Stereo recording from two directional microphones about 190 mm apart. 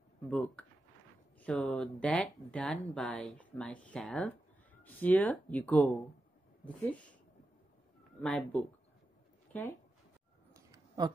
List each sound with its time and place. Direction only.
0.3 s speech: 5° left (ahead or behind)
8.2 s speech: 5° left (ahead or behind)
10.5 s a sound: 15° right (ahead or behind)